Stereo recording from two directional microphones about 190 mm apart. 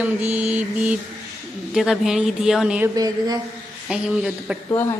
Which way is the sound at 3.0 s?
20° right (ahead or behind).